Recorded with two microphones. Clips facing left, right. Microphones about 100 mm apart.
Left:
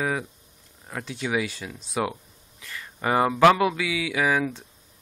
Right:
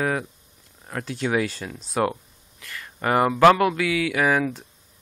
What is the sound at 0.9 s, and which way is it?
Speech, 10° left (ahead or behind).